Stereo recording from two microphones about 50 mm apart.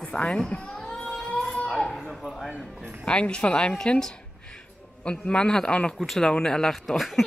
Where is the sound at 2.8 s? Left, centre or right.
Left.